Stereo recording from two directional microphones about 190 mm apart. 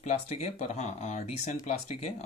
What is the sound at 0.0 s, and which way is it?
Speech, 35° left (ahead or behind).